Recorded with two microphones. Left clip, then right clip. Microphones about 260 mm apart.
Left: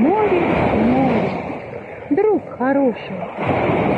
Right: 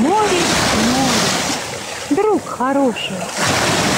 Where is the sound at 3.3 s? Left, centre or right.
Right.